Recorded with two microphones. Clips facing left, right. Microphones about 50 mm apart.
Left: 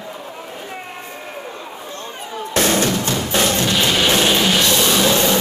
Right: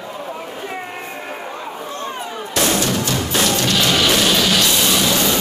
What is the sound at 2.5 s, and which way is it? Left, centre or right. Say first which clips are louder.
Music: left 1 dB; left.